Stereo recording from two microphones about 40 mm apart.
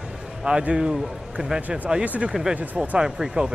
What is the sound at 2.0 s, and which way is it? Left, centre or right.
Speech, right.